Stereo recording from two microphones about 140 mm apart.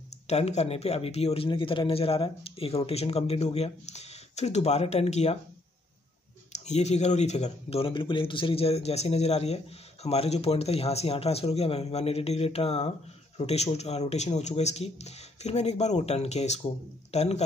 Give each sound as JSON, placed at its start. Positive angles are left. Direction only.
{"t": 0.3, "sound": "speech", "side_deg": 50}
{"t": 6.5, "sound": "speech", "side_deg": 55}